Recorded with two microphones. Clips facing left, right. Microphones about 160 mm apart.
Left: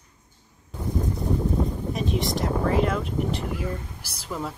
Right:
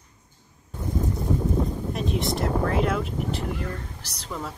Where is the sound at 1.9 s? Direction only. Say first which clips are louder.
Even; centre (ahead or behind).